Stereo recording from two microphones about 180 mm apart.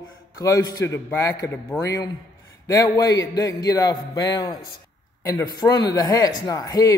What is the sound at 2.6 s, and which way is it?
Speech, 20° left (ahead or behind).